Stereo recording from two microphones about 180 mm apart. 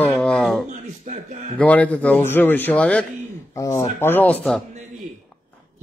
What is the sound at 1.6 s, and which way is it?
A man's voice, 10° left (ahead or behind).